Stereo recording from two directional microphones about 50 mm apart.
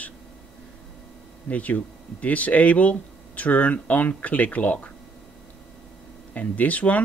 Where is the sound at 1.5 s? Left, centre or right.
Left.